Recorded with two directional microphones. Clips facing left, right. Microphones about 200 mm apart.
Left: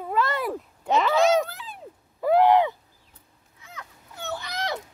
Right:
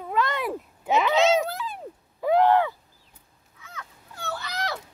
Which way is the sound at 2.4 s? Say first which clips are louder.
Left 2 dB; 15° left (ahead or behind).